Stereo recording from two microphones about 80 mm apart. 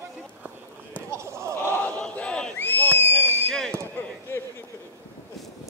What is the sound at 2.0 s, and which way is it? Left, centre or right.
Battle cry, centre.